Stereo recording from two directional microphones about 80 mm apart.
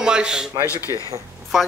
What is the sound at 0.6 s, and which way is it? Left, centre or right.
Speech, left.